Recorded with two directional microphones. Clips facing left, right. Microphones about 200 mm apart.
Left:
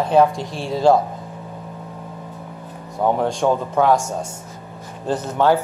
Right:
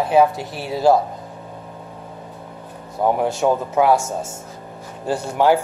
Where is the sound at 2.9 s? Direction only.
5° right (ahead or behind).